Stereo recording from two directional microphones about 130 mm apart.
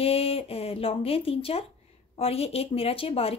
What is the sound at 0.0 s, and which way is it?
Speech, 50° left (ahead or behind).